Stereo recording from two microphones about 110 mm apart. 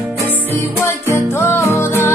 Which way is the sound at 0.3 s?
25° left (ahead or behind).